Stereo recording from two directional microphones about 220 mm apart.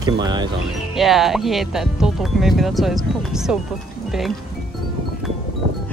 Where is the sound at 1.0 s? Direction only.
Centre (ahead or behind).